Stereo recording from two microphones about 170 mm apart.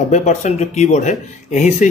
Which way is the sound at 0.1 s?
40° left (ahead or behind).